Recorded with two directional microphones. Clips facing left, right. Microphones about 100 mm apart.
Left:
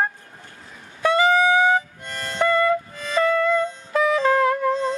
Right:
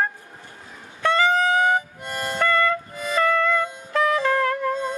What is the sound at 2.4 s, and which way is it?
Music, 10° left (ahead or behind).